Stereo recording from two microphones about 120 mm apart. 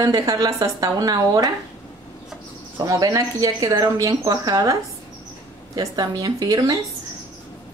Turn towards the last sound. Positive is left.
turn(degrees=-30)  # may be behind; listen again after turning